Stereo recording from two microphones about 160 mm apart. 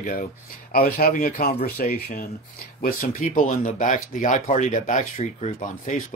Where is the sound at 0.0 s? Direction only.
65° left (ahead or behind).